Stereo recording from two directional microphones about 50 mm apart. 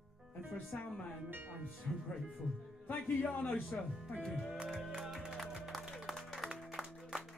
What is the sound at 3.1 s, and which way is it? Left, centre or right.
Speech, left.